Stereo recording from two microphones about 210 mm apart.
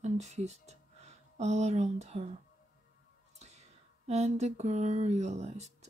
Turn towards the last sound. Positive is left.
turn(degrees=-30)  # may be behind; listen again after turning